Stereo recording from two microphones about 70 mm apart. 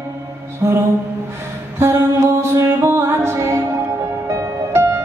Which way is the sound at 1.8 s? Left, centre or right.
Right.